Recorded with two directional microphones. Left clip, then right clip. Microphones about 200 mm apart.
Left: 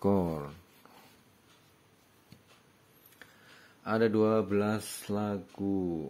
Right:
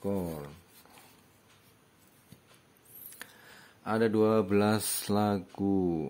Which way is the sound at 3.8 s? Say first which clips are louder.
Even; centre (ahead or behind).